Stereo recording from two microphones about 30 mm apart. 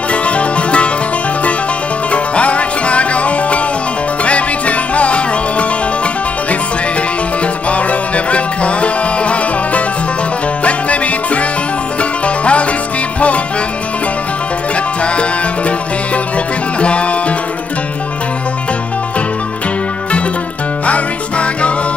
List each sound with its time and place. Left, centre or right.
0.1 s music: left
2.0 s music: left
7.7 s music: left
16.8 s music: left
20.8 s music: left